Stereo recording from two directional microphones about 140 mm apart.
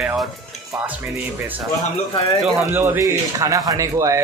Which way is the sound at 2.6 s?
15° right (ahead or behind).